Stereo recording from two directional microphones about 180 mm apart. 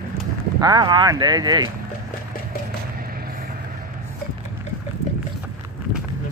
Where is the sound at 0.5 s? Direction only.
20° right (ahead or behind).